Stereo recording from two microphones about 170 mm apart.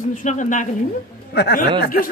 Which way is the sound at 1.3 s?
75° left (ahead or behind).